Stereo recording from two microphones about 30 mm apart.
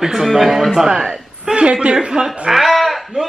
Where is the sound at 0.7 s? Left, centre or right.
Centre.